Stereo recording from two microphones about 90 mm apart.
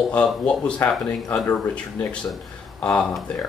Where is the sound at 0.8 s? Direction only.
30° left (ahead or behind); by 3.2 s 10° left (ahead or behind).